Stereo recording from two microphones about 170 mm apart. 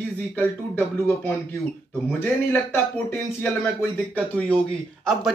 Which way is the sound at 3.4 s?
10° left (ahead or behind).